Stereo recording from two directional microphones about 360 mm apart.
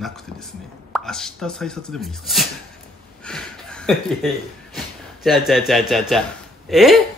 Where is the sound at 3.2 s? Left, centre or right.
Centre.